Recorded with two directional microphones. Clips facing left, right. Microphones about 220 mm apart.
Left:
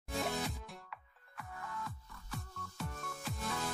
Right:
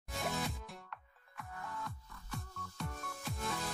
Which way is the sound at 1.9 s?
Centre (ahead or behind).